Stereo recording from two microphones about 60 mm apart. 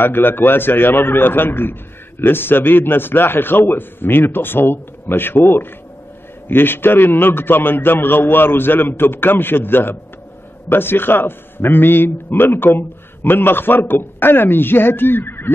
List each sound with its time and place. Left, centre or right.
0.0 s a man's voice: left